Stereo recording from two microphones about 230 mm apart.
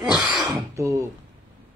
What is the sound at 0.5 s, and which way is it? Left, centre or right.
Speech, centre.